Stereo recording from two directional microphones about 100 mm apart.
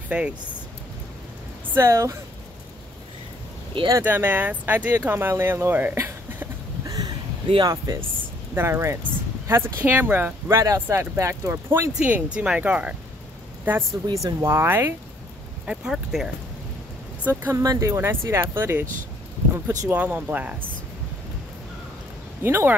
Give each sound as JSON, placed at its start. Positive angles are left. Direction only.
{"t": 0.1, "sound": "speech", "side_deg": -10}
{"t": 1.7, "sound": "speech", "side_deg": -30}
{"t": 4.0, "sound": "speech", "side_deg": -20}
{"t": 10.5, "sound": "speech", "side_deg": -30}
{"t": 14.0, "sound": "speech", "side_deg": -35}
{"t": 15.6, "sound": "speech", "side_deg": -5}
{"t": 17.2, "sound": "speech", "side_deg": -20}
{"t": 17.6, "sound": "speech", "side_deg": -35}
{"t": 19.5, "sound": "speech", "side_deg": -35}
{"t": 19.9, "sound": "speech", "side_deg": -15}
{"t": 22.4, "sound": "speech", "side_deg": -25}